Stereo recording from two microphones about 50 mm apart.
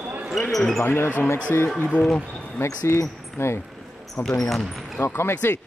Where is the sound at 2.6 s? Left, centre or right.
Left.